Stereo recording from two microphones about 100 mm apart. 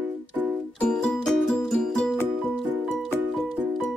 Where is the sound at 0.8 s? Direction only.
5° left (ahead or behind).